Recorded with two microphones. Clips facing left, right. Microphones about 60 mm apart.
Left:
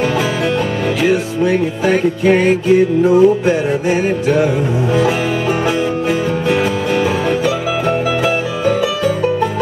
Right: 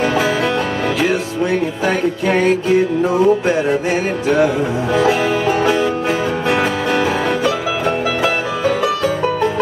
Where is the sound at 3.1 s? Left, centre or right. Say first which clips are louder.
Left 4 dB; right.